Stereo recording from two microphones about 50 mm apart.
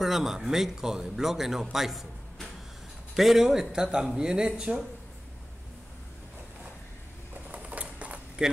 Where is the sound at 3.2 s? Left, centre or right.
Centre.